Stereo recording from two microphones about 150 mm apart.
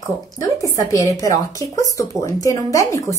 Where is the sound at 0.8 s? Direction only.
20° left (ahead or behind).